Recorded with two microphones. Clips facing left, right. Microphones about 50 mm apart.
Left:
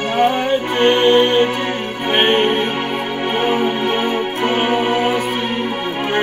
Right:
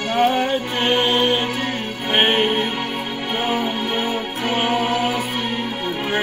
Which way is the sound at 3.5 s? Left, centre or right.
Left.